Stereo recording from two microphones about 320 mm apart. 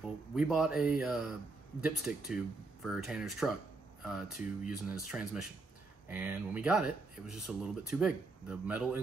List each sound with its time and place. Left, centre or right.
0.0 s speech: centre